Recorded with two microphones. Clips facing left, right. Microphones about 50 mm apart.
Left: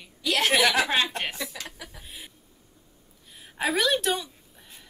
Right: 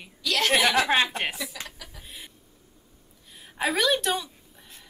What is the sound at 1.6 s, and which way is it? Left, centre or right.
Speech, centre.